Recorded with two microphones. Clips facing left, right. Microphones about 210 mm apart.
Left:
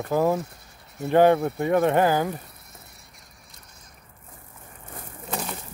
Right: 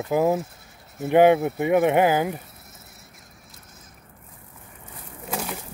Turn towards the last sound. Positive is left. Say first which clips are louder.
# right 1 dB
turn(degrees=-5)  # may be behind; listen again after turning